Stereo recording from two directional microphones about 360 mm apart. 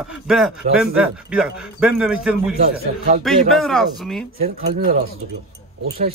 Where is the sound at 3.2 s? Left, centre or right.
Centre.